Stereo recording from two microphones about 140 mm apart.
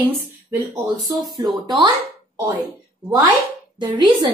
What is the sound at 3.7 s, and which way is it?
Speech, 35° right (ahead or behind).